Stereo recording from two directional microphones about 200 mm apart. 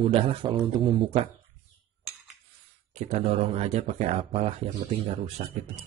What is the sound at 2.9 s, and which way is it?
A man's voice, 30° right (ahead or behind).